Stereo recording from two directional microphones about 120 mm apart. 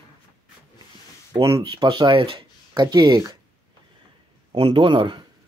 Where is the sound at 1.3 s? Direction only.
45° right (ahead or behind).